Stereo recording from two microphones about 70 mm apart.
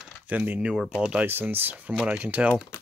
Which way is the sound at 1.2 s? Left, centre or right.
Right.